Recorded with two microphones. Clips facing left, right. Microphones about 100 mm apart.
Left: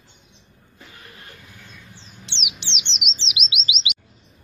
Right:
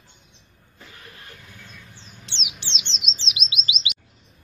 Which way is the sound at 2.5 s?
20° left (ahead or behind).